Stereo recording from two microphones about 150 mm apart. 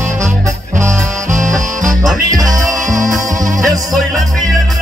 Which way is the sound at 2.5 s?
20° right (ahead or behind).